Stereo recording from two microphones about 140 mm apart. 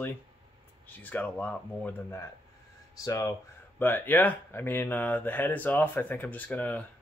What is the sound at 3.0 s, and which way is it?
Speech, 25° left (ahead or behind).